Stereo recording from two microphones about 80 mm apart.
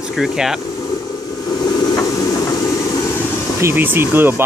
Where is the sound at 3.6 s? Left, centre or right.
Right.